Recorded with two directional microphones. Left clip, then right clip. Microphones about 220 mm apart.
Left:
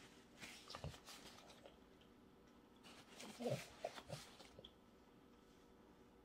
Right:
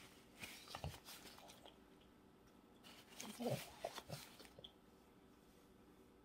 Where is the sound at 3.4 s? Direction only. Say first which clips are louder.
Even; 20° right (ahead or behind).